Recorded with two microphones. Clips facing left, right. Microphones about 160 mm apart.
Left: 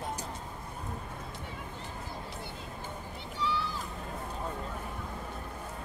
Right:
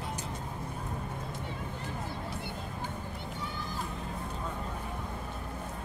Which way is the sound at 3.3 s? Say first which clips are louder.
Left 10 dB; 50° right (ahead or behind).